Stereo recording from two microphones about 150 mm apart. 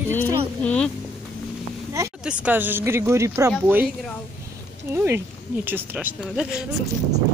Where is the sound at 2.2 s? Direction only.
10° right (ahead or behind).